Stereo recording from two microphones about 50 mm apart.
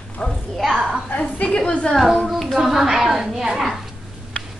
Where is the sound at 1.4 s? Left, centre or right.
Left.